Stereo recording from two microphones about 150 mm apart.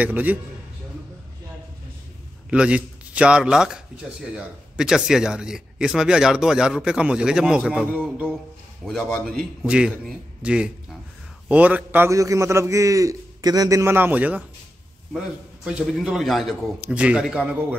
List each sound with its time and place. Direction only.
0.0 s a man's voice: 10° right (ahead or behind)
2.5 s a man's voice: 5° right (ahead or behind)
8.8 s a man's voice: centre (ahead or behind)